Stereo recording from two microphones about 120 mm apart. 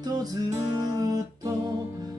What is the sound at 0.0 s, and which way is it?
Music, 35° right (ahead or behind).